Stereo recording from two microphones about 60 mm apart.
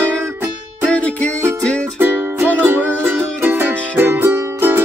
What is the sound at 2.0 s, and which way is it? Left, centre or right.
Music, right.